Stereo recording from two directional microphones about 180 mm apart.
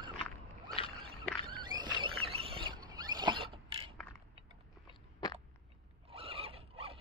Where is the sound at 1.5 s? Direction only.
25° right (ahead or behind).